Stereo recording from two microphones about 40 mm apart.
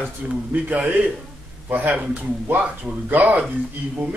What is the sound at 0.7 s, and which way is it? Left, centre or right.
Speech, right.